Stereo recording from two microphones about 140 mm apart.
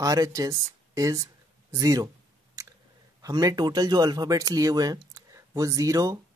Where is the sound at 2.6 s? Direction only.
25° right (ahead or behind).